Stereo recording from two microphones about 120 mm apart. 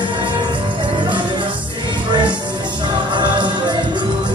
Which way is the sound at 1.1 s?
40° right (ahead or behind).